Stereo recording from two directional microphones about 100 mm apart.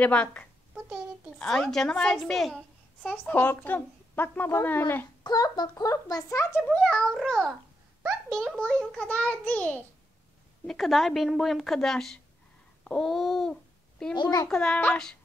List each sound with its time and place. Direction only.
0.0 s a child's voice: 15° left (ahead or behind)
0.7 s a sound: 10° right (ahead or behind)
1.4 s a child's voice: 5° left (ahead or behind)
3.1 s speech: 15° left (ahead or behind)
5.2 s speech: 40° left (ahead or behind)
6.5 s a child's voice: 10° left (ahead or behind)
10.7 s a woman's voice: centre (ahead or behind)
12.8 s babbling: 10° left (ahead or behind)
13.1 s speech: centre (ahead or behind)
14.1 s a child's voice: 45° left (ahead or behind)
14.5 s a child's voice: 10° left (ahead or behind)